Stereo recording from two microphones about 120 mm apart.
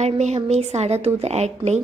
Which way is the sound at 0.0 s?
70° right (ahead or behind).